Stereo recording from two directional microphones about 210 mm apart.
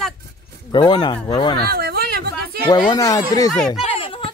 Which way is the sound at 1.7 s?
45° right (ahead or behind).